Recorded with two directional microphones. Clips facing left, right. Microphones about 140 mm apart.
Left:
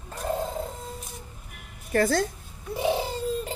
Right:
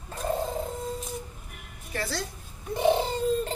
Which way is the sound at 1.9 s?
50° left (ahead or behind).